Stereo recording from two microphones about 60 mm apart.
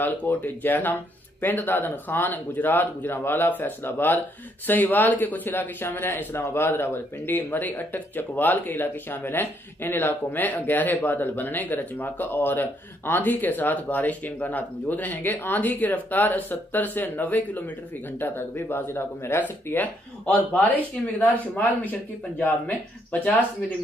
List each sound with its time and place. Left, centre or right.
0.0 s a man's voice: left